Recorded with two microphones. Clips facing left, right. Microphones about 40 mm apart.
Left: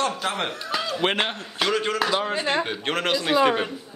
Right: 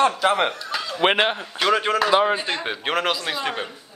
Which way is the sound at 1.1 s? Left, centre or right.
Centre.